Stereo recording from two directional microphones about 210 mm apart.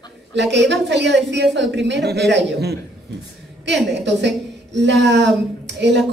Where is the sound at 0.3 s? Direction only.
55° right (ahead or behind).